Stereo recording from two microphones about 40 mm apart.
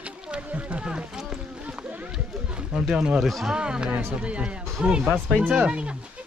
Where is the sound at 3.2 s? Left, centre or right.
Centre.